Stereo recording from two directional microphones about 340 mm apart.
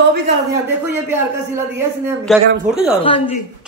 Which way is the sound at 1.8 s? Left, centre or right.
Centre.